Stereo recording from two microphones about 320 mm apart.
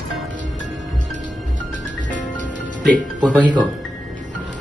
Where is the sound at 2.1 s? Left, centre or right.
Left.